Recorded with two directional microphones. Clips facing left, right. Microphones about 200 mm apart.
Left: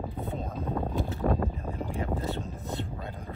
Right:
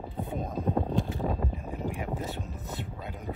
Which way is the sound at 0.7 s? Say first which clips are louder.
Right 4 dB; 15° right (ahead or behind).